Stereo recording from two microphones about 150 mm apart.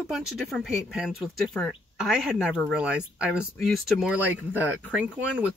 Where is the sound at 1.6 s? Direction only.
10° left (ahead or behind).